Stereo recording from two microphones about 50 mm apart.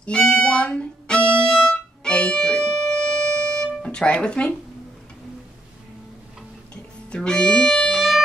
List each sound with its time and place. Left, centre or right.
0.0 s speech: centre
1.0 s violin: centre
2.4 s music: centre
7.2 s speech: centre
7.9 s music: centre